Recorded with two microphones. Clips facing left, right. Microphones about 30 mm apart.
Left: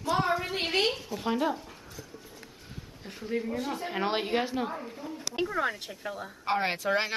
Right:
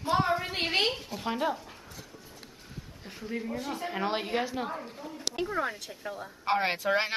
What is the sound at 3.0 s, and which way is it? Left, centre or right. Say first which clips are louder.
Speech: left 3 dB; centre.